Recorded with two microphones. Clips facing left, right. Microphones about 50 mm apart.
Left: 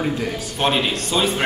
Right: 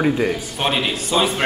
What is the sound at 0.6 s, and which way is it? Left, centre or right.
Speech, centre.